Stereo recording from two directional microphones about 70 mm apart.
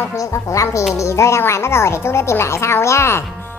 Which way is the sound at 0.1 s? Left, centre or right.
Left.